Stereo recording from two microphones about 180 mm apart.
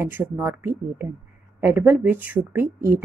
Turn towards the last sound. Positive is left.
turn(degrees=-15)  # may be behind; listen again after turning